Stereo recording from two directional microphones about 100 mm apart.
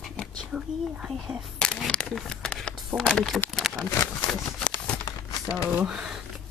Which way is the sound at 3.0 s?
5° left (ahead or behind).